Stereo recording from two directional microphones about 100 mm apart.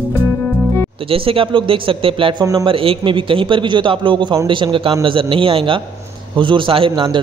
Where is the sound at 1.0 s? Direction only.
65° right (ahead or behind).